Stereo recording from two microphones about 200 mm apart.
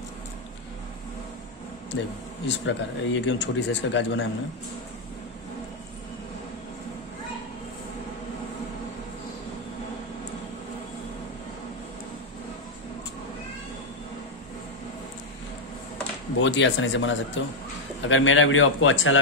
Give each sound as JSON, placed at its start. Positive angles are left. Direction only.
{"t": 1.9, "sound": "a man's voice", "side_deg": 65}
{"t": 16.3, "sound": "a man's voice", "side_deg": 65}